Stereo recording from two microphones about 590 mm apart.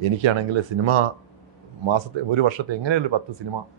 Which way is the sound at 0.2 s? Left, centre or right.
Right.